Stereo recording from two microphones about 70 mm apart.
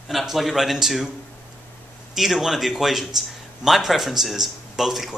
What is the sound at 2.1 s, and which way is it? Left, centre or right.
Speech, centre.